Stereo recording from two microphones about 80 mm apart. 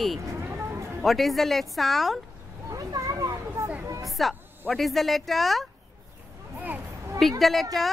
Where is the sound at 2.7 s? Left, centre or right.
Right.